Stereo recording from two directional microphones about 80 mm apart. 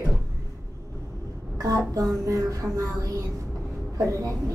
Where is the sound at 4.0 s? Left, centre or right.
Right.